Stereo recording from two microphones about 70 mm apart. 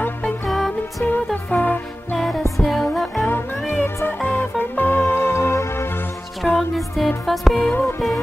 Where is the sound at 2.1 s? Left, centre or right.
Centre.